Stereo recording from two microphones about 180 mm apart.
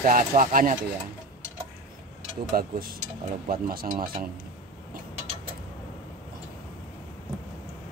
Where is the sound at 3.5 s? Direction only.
55° right (ahead or behind).